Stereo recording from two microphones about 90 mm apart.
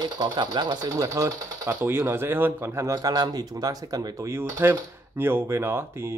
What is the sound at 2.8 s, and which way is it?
Speech, 45° right (ahead or behind).